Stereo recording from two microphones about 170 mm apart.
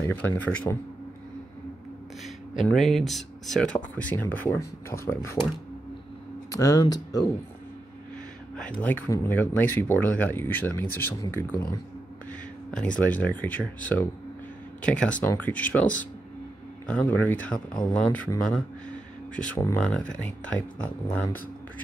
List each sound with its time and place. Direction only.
0.0 s speech: 10° left (ahead or behind)
2.2 s speech: centre (ahead or behind); by 5.4 s 15° left (ahead or behind)
6.5 s speech: 20° left (ahead or behind)
8.8 s speech: 15° left (ahead or behind)
14.8 s speech: 5° left (ahead or behind)
19.3 s speech: 5° left (ahead or behind)